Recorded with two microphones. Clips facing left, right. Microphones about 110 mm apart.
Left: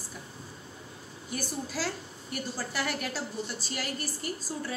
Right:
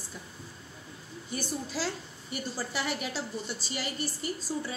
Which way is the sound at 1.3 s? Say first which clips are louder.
Even; centre (ahead or behind).